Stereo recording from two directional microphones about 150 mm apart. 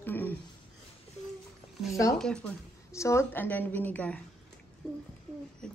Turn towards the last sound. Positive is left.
turn(degrees=10)  # may be behind; listen again after turning